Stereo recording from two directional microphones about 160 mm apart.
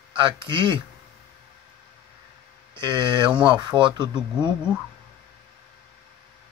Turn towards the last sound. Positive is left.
turn(degrees=-30)  # may be behind; listen again after turning